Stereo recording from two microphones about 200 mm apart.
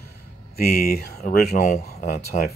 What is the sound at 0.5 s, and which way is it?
Speech, 50° left (ahead or behind).